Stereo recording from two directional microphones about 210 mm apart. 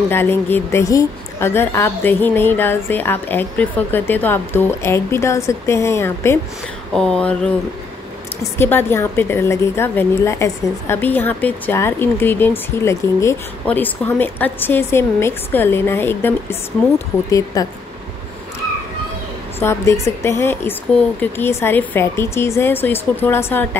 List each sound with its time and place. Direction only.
0.1 s a woman's voice: 10° left (ahead or behind)
6.9 s a sound: 5° left (ahead or behind)
8.5 s a woman's voice: 10° left (ahead or behind)
19.6 s a woman's voice: 15° left (ahead or behind)